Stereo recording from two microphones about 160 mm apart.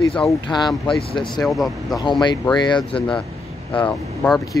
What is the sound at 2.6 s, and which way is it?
Speech, 30° left (ahead or behind).